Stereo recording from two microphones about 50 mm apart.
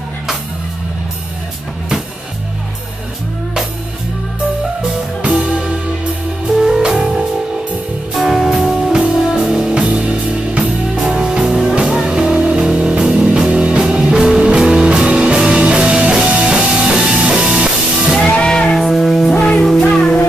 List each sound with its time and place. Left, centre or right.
5.2 s music: right
6.8 s music: centre
18.3 s music: centre
19.3 s music: left
19.6 s music: centre